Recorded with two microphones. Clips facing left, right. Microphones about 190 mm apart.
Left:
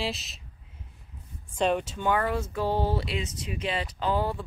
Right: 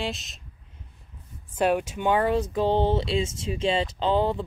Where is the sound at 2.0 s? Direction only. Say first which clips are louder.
Right 4 dB; 20° right (ahead or behind).